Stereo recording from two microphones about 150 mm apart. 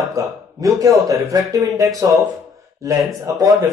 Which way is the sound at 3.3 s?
25° right (ahead or behind).